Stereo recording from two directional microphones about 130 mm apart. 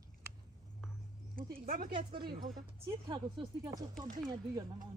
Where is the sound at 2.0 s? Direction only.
35° right (ahead or behind).